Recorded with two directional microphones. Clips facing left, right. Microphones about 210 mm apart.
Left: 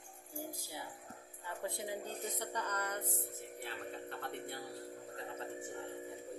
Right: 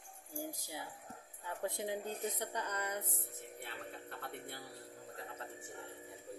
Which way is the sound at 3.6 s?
Centre (ahead or behind).